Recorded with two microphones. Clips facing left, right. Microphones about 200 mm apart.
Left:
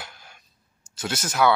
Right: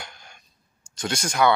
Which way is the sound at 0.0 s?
5° left (ahead or behind).